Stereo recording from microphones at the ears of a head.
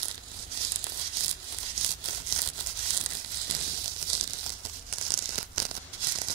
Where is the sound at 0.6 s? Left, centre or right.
Right.